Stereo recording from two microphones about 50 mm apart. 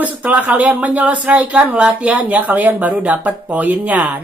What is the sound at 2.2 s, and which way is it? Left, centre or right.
Speech, right.